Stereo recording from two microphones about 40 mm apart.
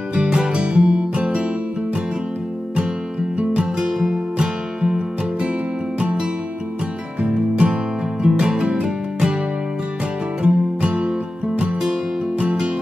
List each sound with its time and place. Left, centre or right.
0.1 s music: right
3.3 s music: right
4.0 s music: centre
10.4 s music: right